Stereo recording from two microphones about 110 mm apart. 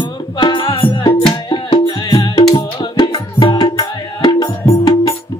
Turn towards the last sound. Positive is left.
turn(degrees=35)  # may be behind; listen again after turning